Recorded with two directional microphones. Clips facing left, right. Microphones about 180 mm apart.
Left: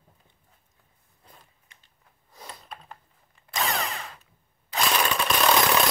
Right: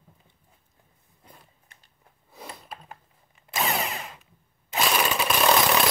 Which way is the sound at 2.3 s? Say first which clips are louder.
Right 2 dB; 5° right (ahead or behind).